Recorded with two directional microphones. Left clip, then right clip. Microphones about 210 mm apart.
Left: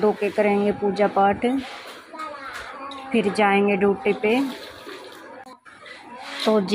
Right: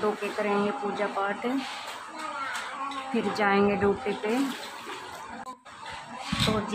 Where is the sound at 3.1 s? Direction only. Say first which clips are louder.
Left 7 dB; 15° left (ahead or behind).